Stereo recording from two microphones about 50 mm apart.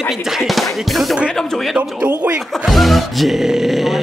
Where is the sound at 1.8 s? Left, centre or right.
Right.